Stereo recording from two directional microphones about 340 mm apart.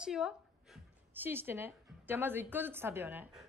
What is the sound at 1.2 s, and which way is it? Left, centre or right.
A woman's voice, centre.